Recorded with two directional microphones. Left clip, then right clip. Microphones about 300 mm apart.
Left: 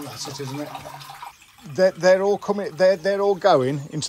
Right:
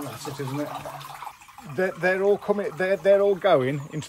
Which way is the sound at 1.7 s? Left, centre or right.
Centre.